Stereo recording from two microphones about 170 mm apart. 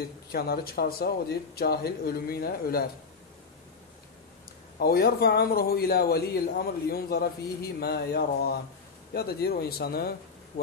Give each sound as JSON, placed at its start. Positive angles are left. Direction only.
{"t": 0.3, "sound": "speech", "side_deg": 65}
{"t": 4.7, "sound": "a man's voice", "side_deg": 65}